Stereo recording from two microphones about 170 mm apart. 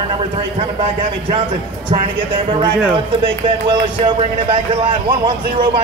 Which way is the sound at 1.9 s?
30° right (ahead or behind).